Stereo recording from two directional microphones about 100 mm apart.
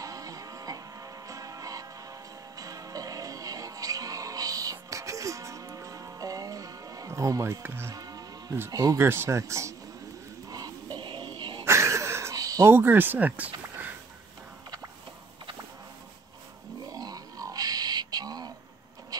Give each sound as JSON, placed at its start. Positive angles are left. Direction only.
{"t": 0.0, "sound": "music", "side_deg": -35}
{"t": 7.6, "sound": "speech", "side_deg": -20}
{"t": 7.9, "sound": "music", "side_deg": -40}
{"t": 8.5, "sound": "speech", "side_deg": -30}
{"t": 10.5, "sound": "a sound", "side_deg": -40}
{"t": 11.0, "sound": "music", "side_deg": -50}
{"t": 11.6, "sound": "a sound", "side_deg": -30}
{"t": 12.7, "sound": "speech", "side_deg": -20}
{"t": 16.9, "sound": "a sound", "side_deg": -40}